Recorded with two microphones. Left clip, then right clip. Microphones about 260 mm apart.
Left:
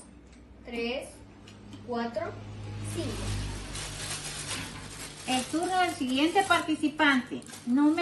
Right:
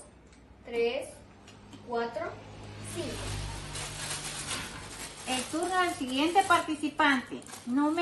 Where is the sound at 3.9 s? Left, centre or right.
Centre.